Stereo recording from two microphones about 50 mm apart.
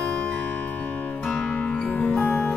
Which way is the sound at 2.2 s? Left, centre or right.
Left.